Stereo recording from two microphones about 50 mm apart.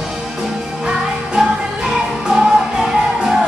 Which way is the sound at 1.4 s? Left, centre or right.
Centre.